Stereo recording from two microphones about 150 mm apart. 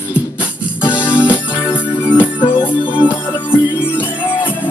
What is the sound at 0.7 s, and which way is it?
Music, 30° left (ahead or behind).